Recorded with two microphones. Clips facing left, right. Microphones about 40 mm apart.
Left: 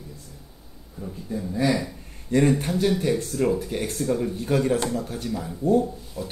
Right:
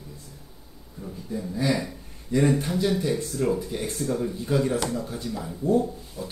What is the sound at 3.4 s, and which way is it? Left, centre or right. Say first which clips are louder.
Speech: left 2 dB; left.